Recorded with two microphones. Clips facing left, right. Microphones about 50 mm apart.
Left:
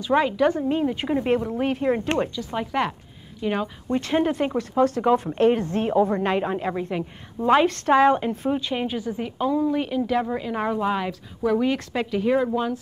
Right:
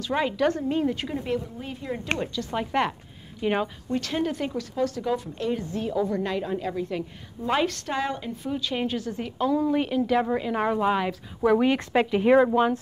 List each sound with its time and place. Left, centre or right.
0.0 s a woman's voice: centre
1.0 s speech: left
1.6 s speech: left
1.9 s speech: left
2.6 s a woman's voice: centre
3.3 s speech: centre
3.8 s speech: left
8.5 s speech: left
8.7 s a woman's voice: centre
9.7 s a woman's voice: centre
11.5 s speech: centre